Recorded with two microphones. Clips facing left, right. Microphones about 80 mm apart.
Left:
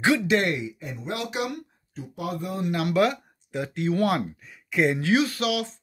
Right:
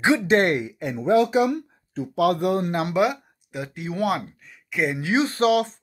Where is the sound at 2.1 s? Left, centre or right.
Right.